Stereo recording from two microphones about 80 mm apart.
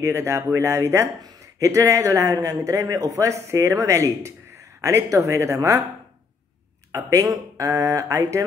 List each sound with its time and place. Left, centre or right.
0.0 s speech: right
6.9 s speech: right